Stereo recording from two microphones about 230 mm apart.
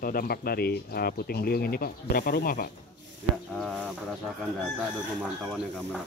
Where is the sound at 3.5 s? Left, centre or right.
Centre.